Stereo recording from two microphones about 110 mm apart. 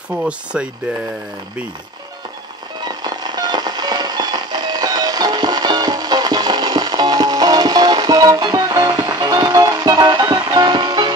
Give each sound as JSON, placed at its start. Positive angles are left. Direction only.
{"t": 0.1, "sound": "speech", "side_deg": -10}
{"t": 2.8, "sound": "music", "side_deg": -40}